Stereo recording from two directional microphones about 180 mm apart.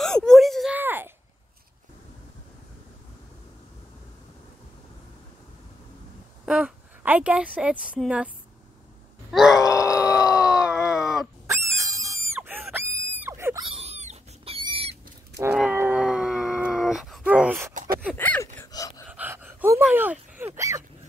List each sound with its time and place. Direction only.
0.0 s a sound: 5° left (ahead or behind)
0.7 s a sound: 10° right (ahead or behind)
6.4 s a woman's voice: 5° right (ahead or behind)
9.3 s groan: centre (ahead or behind)
9.7 s howl: 15° left (ahead or behind)
10.2 s groan: 5° right (ahead or behind)
11.4 s pig: 15° right (ahead or behind)
12.4 s a sound: 10° right (ahead or behind)
13.7 s wild animals: 35° right (ahead or behind)
15.5 s dog: 10° right (ahead or behind)
18.1 s gasp: 10° left (ahead or behind)
19.0 s gasp: 10° right (ahead or behind)